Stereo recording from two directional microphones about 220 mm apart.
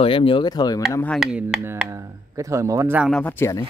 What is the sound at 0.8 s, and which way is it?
Speech, 5° left (ahead or behind).